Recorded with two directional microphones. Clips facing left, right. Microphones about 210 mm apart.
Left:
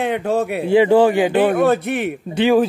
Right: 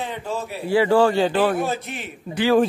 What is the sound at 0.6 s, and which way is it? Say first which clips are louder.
Speech: left 4 dB; 20° left (ahead or behind).